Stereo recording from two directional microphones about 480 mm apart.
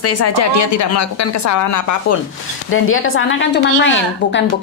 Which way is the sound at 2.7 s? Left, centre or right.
Left.